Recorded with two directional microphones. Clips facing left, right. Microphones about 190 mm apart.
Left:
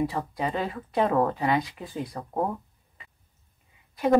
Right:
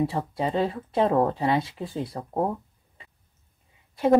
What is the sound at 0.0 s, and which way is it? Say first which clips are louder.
A woman's voice: right 2 dB; 30° right (ahead or behind).